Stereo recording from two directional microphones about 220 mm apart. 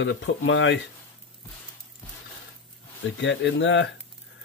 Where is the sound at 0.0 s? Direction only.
55° left (ahead or behind).